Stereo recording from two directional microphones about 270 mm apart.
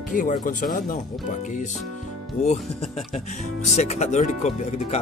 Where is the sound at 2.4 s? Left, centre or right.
Left.